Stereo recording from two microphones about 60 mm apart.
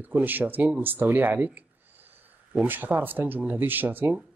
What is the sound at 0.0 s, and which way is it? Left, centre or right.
Speech, right.